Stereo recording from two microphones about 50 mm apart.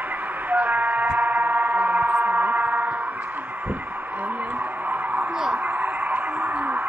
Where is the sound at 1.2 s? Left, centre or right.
Right.